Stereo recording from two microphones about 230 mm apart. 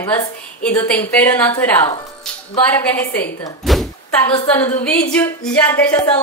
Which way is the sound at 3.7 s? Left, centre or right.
Centre.